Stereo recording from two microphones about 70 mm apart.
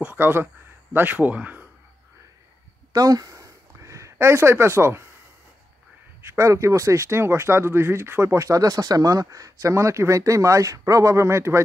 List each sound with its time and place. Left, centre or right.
0.2 s speech: right
2.9 s a sound: right
6.2 s speech: right